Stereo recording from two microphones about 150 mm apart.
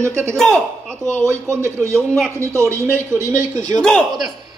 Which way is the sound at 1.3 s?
20° right (ahead or behind).